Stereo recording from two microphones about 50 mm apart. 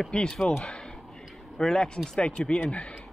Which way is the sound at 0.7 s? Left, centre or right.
Centre.